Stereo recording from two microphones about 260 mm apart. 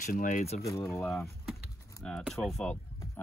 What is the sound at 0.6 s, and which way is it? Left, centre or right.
Speech, centre.